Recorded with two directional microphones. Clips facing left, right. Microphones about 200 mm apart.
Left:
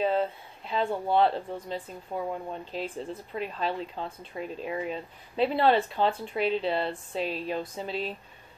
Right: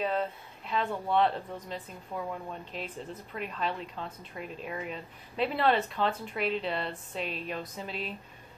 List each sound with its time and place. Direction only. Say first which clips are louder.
0.0 s speech: left 4 dB; 30° left (ahead or behind)